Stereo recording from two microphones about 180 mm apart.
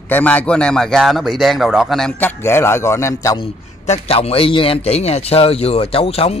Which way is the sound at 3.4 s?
35° left (ahead or behind).